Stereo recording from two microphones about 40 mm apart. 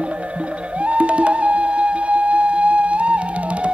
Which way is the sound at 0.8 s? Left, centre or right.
Right.